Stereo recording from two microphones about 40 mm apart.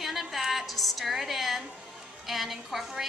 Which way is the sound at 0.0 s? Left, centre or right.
Centre.